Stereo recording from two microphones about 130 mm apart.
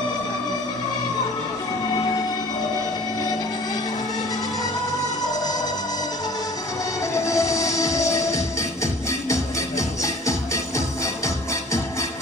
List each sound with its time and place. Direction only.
7.2 s train: 25° left (ahead or behind)
9.3 s music: 25° left (ahead or behind)